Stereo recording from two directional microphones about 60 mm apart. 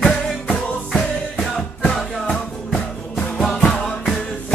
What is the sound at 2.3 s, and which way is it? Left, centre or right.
Music, centre.